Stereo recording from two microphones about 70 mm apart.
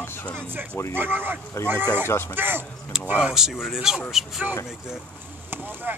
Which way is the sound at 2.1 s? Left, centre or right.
Left.